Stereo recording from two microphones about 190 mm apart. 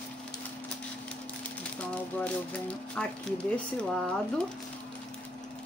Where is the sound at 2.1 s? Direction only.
5° left (ahead or behind).